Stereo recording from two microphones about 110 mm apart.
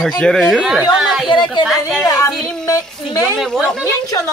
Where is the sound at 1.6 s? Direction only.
Centre (ahead or behind).